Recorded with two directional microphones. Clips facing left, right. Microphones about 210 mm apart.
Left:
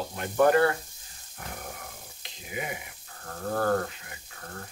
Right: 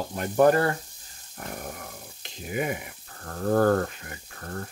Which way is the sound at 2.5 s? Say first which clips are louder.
Right 6 dB; 50° right (ahead or behind).